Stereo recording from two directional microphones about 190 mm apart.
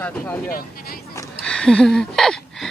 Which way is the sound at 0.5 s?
50° left (ahead or behind).